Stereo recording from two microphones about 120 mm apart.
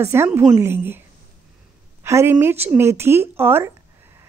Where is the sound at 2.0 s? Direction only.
20° right (ahead or behind).